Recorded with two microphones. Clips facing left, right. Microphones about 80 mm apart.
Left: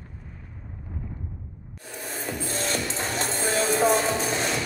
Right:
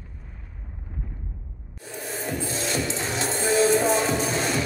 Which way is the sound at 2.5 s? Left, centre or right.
Left.